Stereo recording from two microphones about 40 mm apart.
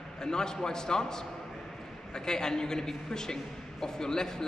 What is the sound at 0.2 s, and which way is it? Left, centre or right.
A man's voice, centre.